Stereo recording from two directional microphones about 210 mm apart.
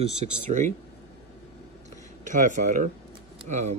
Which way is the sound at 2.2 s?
35° right (ahead or behind).